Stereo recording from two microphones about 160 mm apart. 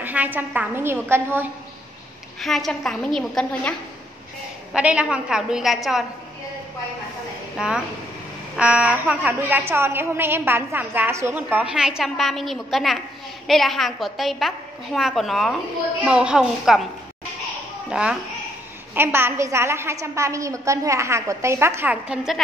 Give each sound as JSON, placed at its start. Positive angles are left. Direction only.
{"t": 0.0, "sound": "a woman's voice", "side_deg": -10}
{"t": 2.4, "sound": "a woman's voice", "side_deg": 0}
{"t": 4.7, "sound": "a woman's voice", "side_deg": -5}
{"t": 7.5, "sound": "a woman's voice", "side_deg": -5}
{"t": 17.8, "sound": "a woman's voice", "side_deg": -5}